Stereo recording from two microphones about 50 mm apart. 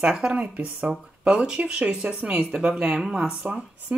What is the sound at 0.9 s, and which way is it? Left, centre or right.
Speech, centre.